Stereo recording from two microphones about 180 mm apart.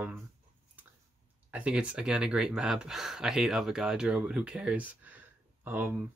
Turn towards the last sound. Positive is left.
turn(degrees=-10)  # may be behind; listen again after turning